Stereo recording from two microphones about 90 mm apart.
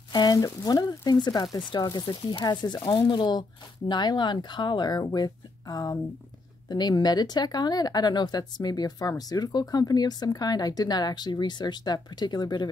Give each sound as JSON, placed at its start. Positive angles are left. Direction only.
{"t": 0.1, "sound": "speech", "side_deg": 50}